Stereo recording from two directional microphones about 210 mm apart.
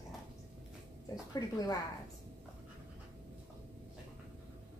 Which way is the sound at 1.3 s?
15° left (ahead or behind).